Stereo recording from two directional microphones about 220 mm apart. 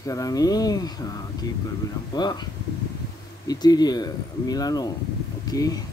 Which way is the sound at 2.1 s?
20° left (ahead or behind).